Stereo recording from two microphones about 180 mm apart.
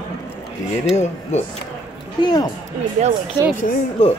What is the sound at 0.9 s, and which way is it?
Speech, 40° left (ahead or behind).